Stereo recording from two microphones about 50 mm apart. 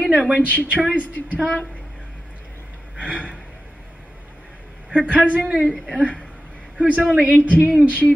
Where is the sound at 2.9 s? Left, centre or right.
Right.